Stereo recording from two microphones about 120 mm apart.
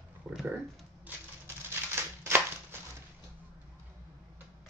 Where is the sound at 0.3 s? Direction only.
5° right (ahead or behind).